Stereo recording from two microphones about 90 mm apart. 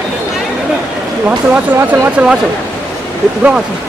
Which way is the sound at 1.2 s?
20° right (ahead or behind).